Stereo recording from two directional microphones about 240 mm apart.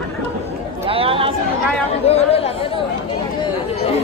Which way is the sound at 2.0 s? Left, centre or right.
Left.